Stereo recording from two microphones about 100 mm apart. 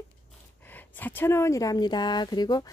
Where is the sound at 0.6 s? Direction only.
20° left (ahead or behind); by 2.7 s 40° left (ahead or behind).